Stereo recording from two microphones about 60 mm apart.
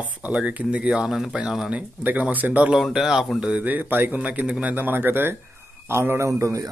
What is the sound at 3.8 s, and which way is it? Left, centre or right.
Speech, right.